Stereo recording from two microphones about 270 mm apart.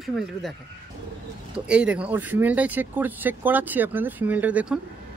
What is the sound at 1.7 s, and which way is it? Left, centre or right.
Speech, centre.